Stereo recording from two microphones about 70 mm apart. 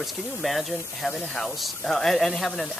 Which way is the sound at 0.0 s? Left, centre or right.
Centre.